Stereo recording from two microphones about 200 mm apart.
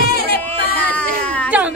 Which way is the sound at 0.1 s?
50° left (ahead or behind).